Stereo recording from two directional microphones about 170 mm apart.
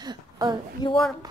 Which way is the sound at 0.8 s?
20° left (ahead or behind).